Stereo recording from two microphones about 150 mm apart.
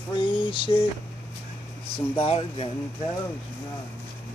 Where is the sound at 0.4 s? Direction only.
35° left (ahead or behind).